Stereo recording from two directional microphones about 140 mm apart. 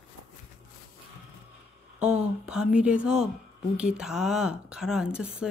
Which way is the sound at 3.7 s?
5° right (ahead or behind).